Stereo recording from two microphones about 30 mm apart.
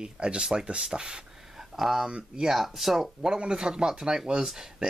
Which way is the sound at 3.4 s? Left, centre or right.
Right.